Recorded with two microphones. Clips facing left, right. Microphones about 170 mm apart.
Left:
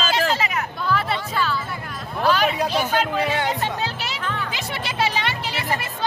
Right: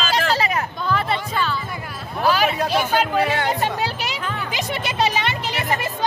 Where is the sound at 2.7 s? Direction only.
10° right (ahead or behind).